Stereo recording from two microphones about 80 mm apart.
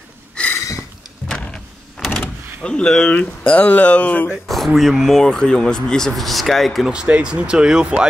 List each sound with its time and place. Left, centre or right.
0.6 s a sound: left
1.3 s power windows: centre
2.1 s speech: centre
4.5 s speech: centre
6.9 s speech: centre